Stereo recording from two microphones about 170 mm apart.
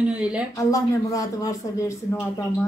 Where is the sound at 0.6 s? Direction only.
20° left (ahead or behind).